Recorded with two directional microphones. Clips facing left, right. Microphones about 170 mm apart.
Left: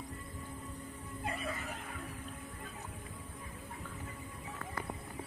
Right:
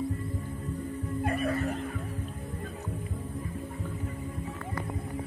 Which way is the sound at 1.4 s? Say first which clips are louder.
Right 12 dB; 60° right (ahead or behind).